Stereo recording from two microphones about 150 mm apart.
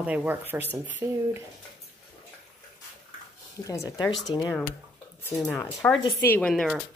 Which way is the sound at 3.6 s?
20° left (ahead or behind).